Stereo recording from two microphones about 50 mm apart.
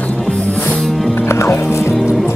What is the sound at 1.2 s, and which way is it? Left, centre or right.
Music, left.